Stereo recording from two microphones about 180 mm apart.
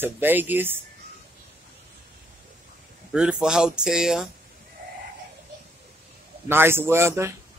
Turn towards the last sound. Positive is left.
turn(degrees=-15)  # may be behind; listen again after turning